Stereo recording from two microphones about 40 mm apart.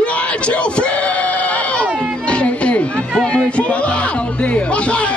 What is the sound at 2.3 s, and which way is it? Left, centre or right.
Music, left.